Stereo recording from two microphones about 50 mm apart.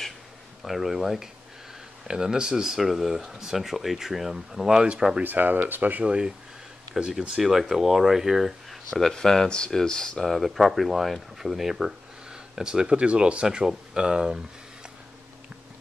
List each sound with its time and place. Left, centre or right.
0.7 s speech: centre
5.2 s speech: right
6.0 s speech: centre
9.0 s speech: centre
12.3 s speech: centre